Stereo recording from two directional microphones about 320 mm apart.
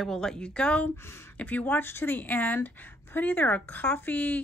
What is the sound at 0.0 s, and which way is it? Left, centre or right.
Speech, centre.